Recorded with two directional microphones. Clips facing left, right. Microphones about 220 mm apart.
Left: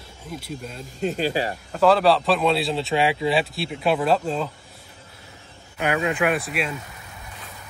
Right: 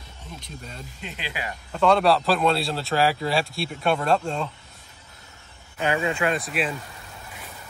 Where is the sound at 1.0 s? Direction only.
45° left (ahead or behind).